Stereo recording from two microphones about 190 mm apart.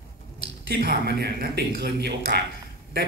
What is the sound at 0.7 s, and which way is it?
Speech, 60° right (ahead or behind).